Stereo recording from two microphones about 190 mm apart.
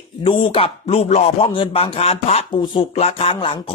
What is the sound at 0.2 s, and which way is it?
Speech, 25° left (ahead or behind).